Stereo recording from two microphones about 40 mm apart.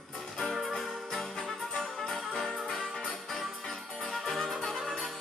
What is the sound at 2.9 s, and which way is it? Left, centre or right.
Music, centre.